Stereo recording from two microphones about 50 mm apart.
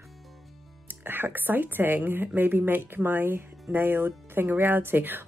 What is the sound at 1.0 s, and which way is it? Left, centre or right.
A woman's voice, right.